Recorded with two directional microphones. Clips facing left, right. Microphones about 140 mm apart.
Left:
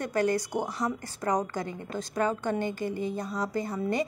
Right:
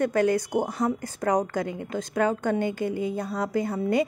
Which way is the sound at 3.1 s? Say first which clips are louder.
Right 4 dB; 55° right (ahead or behind).